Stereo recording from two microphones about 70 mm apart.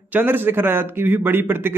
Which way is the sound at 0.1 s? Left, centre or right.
Right.